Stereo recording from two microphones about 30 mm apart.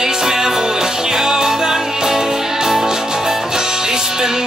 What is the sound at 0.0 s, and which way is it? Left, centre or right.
Music, centre.